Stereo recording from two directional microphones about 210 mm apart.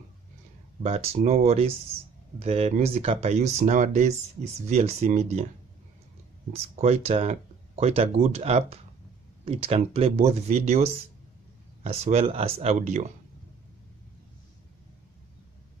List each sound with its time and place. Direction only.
0.8 s speech: 30° right (ahead or behind)
6.5 s speech: 30° right (ahead or behind)